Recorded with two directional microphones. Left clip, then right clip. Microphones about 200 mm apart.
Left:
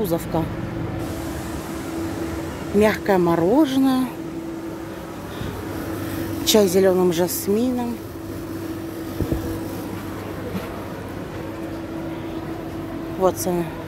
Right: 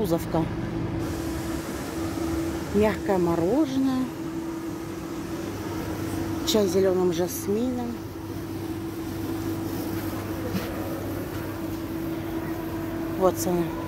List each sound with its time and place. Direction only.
0.0 s speech: centre (ahead or behind)
2.8 s speech: 20° left (ahead or behind)
6.4 s speech: 25° left (ahead or behind)
13.2 s speech: centre (ahead or behind)